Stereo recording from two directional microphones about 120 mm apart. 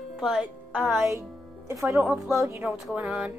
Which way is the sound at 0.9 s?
20° right (ahead or behind).